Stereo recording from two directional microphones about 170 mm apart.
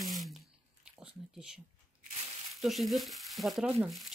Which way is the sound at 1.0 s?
5° right (ahead or behind).